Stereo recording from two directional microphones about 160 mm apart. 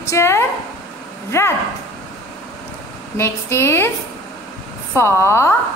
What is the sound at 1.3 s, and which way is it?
Speech, 15° left (ahead or behind).